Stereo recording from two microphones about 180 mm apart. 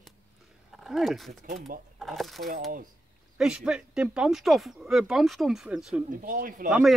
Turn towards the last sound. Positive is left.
turn(degrees=-5)  # may be behind; listen again after turning